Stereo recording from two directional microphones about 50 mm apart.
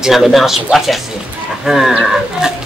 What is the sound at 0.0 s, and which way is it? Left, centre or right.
A man's voice, centre.